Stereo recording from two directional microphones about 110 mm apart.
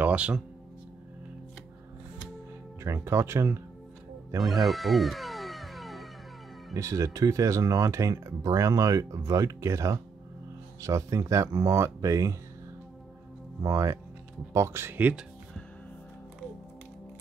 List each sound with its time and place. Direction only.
0.0 s music: 10° right (ahead or behind)
2.8 s speech: 25° right (ahead or behind)
4.4 s cat: centre (ahead or behind)
6.7 s speech: 30° right (ahead or behind)
13.6 s speech: 30° right (ahead or behind); by 15.2 s 15° right (ahead or behind)